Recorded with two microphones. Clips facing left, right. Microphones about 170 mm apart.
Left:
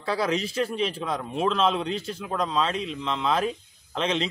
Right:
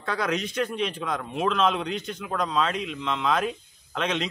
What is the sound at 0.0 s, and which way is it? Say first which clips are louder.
Speech: left 2 dB; 30° left (ahead or behind).